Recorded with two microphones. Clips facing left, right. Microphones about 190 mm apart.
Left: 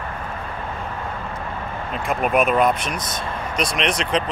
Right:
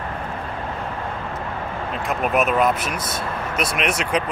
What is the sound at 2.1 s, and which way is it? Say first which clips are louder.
Speech: left 2 dB; centre (ahead or behind).